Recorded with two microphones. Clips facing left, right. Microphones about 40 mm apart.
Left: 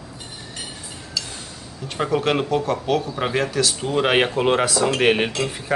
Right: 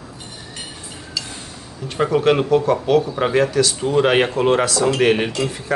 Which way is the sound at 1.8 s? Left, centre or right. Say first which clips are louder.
Right 5 dB; centre.